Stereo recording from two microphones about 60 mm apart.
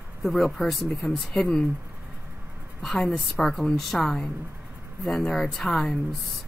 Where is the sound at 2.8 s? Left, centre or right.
Centre.